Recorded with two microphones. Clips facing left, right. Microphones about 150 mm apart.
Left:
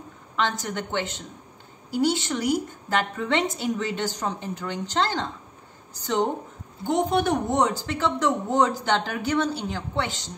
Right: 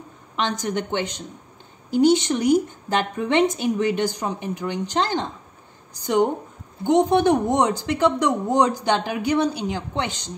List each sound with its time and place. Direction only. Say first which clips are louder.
0.4 s a woman's voice: right 3 dB; 20° right (ahead or behind)
6.8 s speech: right 5 dB; 20° right (ahead or behind)